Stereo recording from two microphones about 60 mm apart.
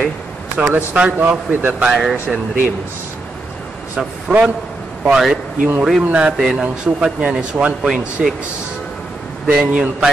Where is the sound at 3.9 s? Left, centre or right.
Right.